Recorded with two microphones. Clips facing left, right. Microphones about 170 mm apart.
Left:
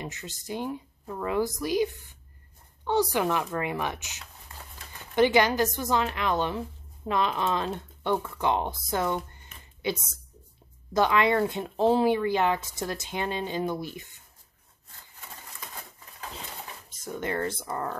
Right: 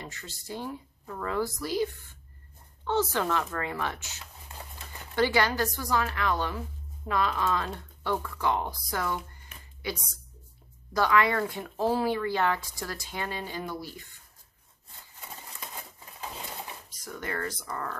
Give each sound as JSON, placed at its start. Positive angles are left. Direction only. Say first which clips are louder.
{"t": 0.0, "sound": "speech", "louder": "left 5 dB", "side_deg": 20}
{"t": 16.9, "sound": "speech", "louder": "left 5 dB", "side_deg": 25}